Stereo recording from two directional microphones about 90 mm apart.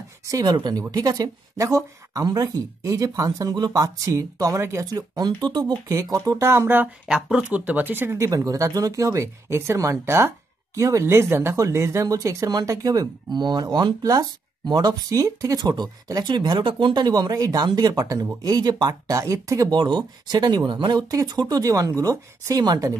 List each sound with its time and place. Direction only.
0.2 s speech: 45° right (ahead or behind)
4.9 s speech: 45° right (ahead or behind)
6.1 s speech: 40° right (ahead or behind)
7.1 s speech: 5° right (ahead or behind); by 19.7 s 40° right (ahead or behind)
19.7 s speech: 60° right (ahead or behind)
21.1 s speech: 45° right (ahead or behind)